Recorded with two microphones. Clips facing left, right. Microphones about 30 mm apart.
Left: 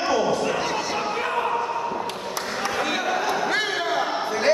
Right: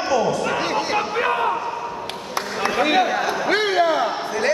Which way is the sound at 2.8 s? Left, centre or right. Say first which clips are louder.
Right 10 dB; right.